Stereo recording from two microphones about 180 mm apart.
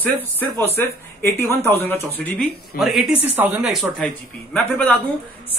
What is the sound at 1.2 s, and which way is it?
Speech, 15° left (ahead or behind).